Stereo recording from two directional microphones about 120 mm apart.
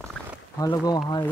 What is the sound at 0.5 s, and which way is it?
Speech, 30° left (ahead or behind).